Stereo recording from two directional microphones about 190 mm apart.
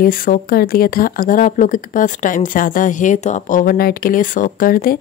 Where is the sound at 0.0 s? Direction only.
45° left (ahead or behind).